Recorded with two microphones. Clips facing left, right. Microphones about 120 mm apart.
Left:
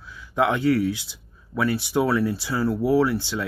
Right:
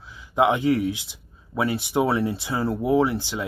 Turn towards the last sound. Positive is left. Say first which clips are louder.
# even
turn(degrees=-20)  # may be behind; listen again after turning